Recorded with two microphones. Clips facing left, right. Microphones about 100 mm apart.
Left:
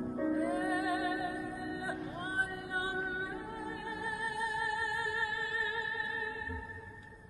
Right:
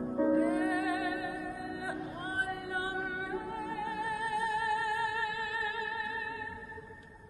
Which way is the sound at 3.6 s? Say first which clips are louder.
Right 4 dB; 20° left (ahead or behind).